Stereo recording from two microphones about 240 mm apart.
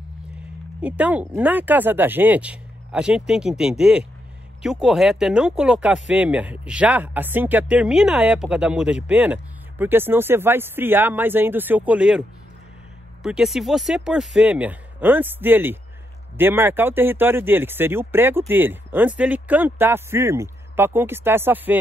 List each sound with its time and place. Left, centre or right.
0.7 s speech: centre